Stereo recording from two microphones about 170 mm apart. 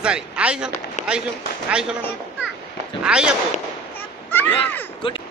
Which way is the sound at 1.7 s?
5° right (ahead or behind).